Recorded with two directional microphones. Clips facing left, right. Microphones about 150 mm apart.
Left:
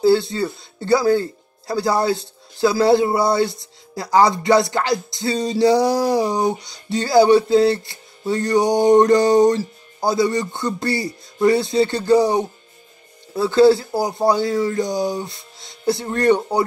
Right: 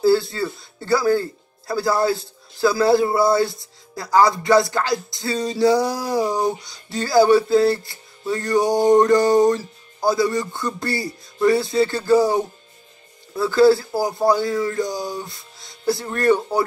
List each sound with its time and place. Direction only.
0.0 s music: 20° left (ahead or behind)